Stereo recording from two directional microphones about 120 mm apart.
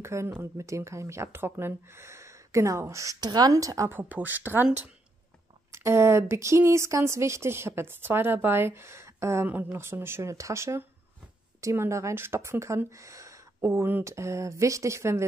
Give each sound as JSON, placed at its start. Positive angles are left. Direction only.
{"t": 0.0, "sound": "speech", "side_deg": -25}
{"t": 5.7, "sound": "speech", "side_deg": -20}